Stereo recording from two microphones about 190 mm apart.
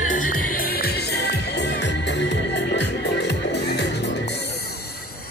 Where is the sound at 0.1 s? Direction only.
45° left (ahead or behind); by 4.6 s 60° left (ahead or behind).